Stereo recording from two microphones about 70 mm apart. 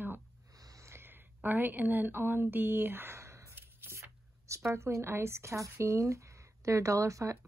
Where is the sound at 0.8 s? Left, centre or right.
Right.